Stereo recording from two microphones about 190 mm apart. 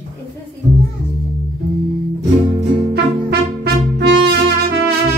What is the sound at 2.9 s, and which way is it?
Music, 55° right (ahead or behind).